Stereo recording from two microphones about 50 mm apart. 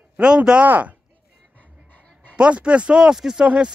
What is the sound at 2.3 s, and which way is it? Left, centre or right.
Speech, right.